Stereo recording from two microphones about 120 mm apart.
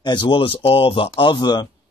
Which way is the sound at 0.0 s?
40° left (ahead or behind).